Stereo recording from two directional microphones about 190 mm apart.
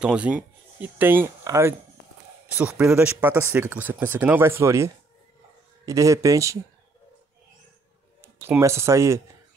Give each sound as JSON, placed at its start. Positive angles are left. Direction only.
{"t": 0.0, "sound": "speech", "side_deg": -5}
{"t": 8.2, "sound": "speech", "side_deg": -10}